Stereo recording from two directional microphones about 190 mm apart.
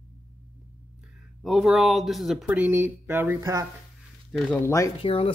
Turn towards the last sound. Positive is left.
turn(degrees=30)  # may be behind; listen again after turning